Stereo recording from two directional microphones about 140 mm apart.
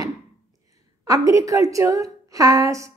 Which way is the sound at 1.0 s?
25° right (ahead or behind).